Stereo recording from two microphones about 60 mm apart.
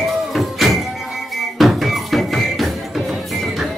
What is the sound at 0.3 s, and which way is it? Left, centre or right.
Music, centre.